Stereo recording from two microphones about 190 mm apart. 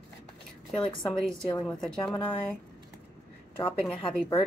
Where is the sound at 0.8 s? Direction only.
5° left (ahead or behind).